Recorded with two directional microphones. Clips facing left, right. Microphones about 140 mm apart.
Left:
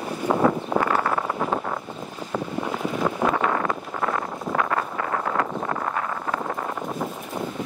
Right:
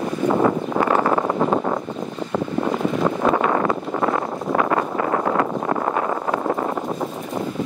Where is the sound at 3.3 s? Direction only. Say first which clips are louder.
Right 4 dB; 30° right (ahead or behind).